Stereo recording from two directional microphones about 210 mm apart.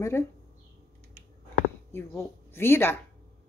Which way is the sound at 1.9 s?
10° left (ahead or behind).